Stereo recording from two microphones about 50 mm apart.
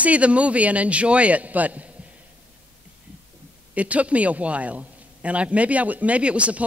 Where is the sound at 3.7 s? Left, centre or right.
Right.